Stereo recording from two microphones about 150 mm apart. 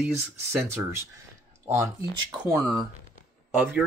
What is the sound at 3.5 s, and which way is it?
Speech, 5° right (ahead or behind).